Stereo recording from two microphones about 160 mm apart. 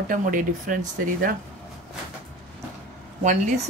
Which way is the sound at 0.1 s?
55° right (ahead or behind).